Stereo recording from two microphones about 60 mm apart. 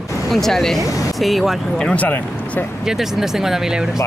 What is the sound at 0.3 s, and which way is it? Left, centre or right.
Speech, centre.